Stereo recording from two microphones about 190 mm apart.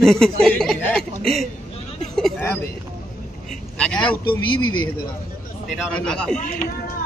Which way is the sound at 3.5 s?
5° left (ahead or behind).